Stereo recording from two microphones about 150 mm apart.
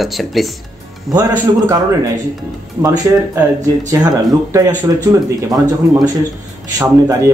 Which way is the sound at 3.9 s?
20° right (ahead or behind).